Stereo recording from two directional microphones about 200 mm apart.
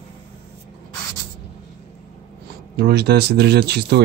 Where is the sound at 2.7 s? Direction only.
55° right (ahead or behind).